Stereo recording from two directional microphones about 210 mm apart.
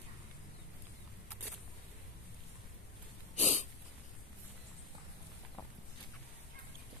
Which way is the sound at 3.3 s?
35° left (ahead or behind).